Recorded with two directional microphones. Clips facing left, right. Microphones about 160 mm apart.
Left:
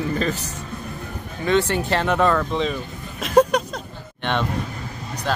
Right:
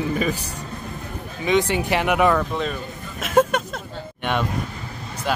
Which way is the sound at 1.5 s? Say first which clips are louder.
Even; 15° right (ahead or behind).